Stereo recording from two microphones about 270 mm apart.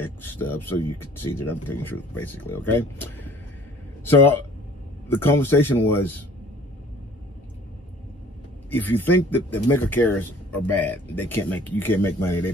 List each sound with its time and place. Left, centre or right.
0.0 s speech: centre
8.6 s speech: centre